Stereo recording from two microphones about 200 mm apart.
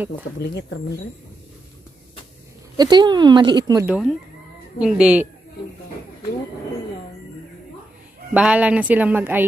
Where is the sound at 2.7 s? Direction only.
20° right (ahead or behind).